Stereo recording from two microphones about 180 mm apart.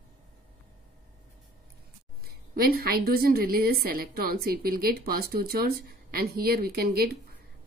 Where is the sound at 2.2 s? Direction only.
55° right (ahead or behind).